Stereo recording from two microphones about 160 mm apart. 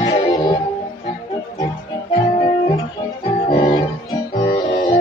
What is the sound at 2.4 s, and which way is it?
Music, 35° left (ahead or behind).